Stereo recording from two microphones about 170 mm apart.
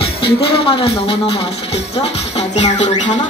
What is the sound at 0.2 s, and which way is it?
Speech, 30° left (ahead or behind).